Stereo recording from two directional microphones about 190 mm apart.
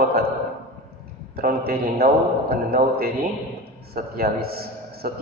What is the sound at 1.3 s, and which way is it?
A man's voice, 55° right (ahead or behind).